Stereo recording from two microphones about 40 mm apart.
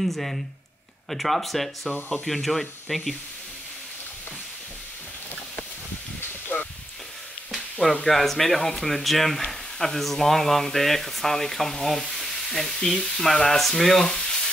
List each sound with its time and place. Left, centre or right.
0.0 s speech: centre
6.5 s a sound: left
7.8 s speech: centre